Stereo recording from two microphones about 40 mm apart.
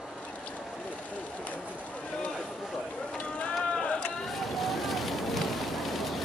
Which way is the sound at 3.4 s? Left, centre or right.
Left.